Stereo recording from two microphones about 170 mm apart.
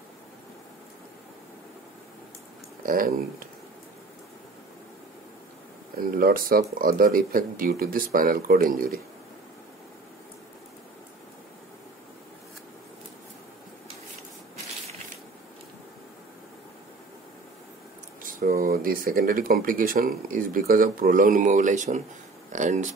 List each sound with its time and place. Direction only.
2.8 s speech: 55° right (ahead or behind)
5.9 s speech: 55° right (ahead or behind)
18.2 s speech: 55° right (ahead or behind)